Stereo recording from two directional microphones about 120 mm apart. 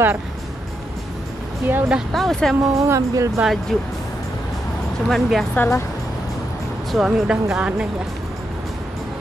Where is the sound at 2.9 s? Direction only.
25° right (ahead or behind).